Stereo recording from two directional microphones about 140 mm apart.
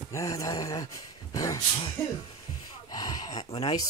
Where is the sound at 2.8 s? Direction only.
30° left (ahead or behind).